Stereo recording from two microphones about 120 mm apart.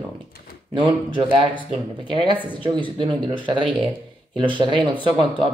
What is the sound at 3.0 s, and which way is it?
Speech, 45° right (ahead or behind).